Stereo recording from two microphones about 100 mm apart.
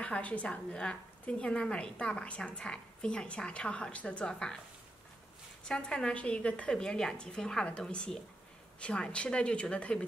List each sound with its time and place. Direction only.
0.0 s a woman's voice: 15° left (ahead or behind)
5.7 s a woman's voice: 10° left (ahead or behind)